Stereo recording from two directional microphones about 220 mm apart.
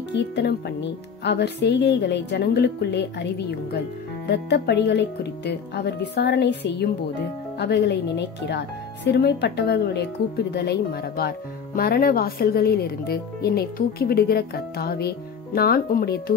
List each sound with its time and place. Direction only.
0.1 s speech: 50° left (ahead or behind)